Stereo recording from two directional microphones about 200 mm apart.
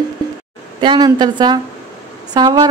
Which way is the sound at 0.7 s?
20° right (ahead or behind).